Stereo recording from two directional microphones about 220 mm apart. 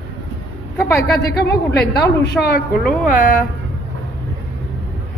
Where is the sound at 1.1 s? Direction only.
50° left (ahead or behind).